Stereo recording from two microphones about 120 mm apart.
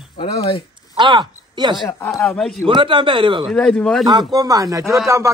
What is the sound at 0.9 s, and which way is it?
Speech, 40° right (ahead or behind).